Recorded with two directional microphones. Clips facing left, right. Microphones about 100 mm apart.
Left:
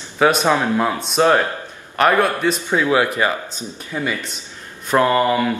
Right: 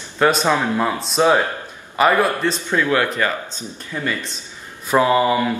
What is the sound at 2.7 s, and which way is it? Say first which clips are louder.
Speech: left 1 dB; 15° left (ahead or behind).